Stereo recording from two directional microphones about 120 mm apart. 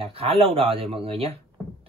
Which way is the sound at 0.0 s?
55° right (ahead or behind).